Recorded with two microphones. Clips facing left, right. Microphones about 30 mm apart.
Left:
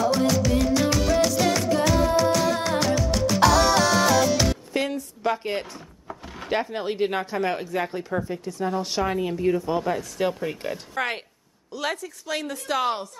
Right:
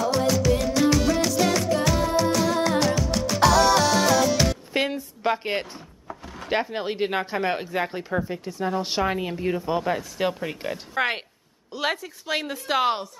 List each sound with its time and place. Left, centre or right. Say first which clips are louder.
0.0 s music: even; centre
4.7 s a sound: right 1 dB; right
6.0 s drawer open or close: even; centre
6.5 s speech: even; centre
11.0 s speech: right 4 dB; right